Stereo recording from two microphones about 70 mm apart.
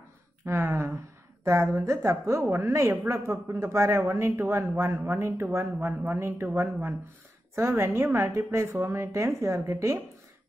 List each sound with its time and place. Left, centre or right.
0.5 s a woman's voice: right
4.0 s speech: right
8.7 s a woman's voice: right
9.0 s a woman's voice: right